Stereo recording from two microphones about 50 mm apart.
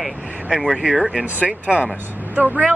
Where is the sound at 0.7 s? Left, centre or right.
Centre.